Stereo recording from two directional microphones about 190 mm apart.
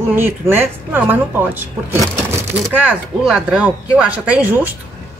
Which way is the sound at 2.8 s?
5° right (ahead or behind).